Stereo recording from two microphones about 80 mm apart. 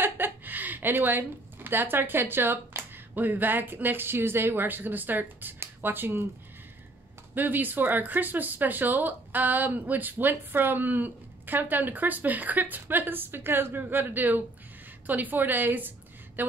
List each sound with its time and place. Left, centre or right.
0.0 s a woman's voice: right
7.3 s speech: right